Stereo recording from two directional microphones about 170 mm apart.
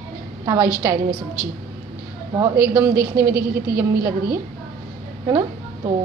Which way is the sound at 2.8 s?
65° right (ahead or behind).